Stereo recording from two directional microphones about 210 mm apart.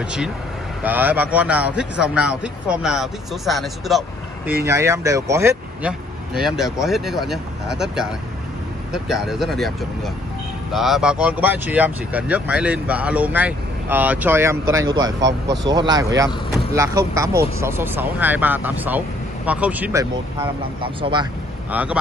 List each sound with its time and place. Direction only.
0.8 s speech: 10° right (ahead or behind)
4.6 s speech: 15° right (ahead or behind)
15.0 s speech: 55° right (ahead or behind)
15.6 s speech: 20° right (ahead or behind)
20.8 s speech: 25° right (ahead or behind)
21.6 s speech: 5° right (ahead or behind)